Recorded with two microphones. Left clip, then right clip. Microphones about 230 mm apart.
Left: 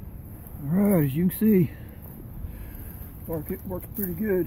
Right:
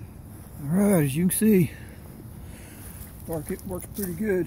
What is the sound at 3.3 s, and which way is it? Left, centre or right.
Speech, right.